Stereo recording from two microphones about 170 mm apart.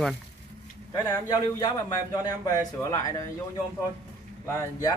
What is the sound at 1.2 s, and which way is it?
Speech, 25° left (ahead or behind).